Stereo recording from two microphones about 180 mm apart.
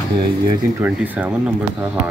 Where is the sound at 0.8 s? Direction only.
10° right (ahead or behind).